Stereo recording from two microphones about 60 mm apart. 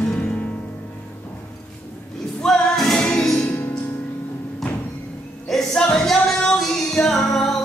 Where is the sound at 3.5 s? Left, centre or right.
Left.